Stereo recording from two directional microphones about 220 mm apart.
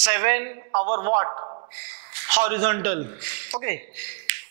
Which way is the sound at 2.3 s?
15° right (ahead or behind).